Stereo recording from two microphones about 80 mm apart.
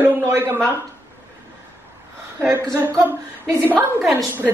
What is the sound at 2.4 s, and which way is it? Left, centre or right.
Speech, right.